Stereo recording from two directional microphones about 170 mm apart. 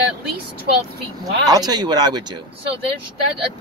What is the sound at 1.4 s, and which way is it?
Speech, 20° right (ahead or behind).